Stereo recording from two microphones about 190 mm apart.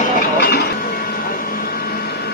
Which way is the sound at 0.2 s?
50° left (ahead or behind).